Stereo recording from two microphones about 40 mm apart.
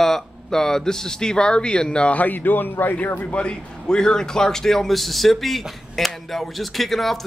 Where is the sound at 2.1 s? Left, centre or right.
Left.